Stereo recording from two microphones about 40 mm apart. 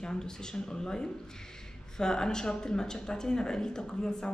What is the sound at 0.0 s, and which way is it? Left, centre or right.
Speech, centre.